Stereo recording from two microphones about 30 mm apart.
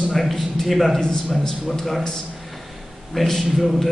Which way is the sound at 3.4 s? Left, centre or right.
Centre.